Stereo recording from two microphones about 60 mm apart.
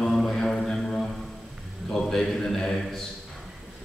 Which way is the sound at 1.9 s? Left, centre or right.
Centre.